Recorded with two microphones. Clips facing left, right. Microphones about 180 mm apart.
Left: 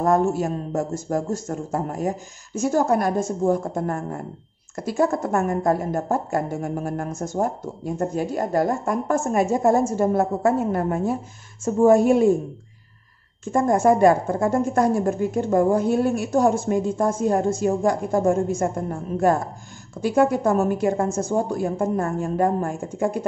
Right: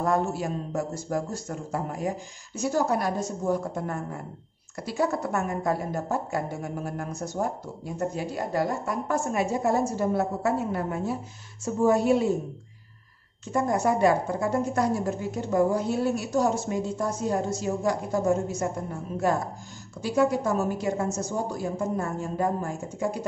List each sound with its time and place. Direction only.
0.0 s a woman's voice: 45° left (ahead or behind)
13.5 s a woman's voice: 50° left (ahead or behind)